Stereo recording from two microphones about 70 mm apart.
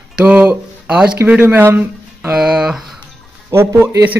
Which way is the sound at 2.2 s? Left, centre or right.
Centre.